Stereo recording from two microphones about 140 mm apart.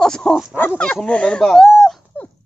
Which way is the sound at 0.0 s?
5° left (ahead or behind).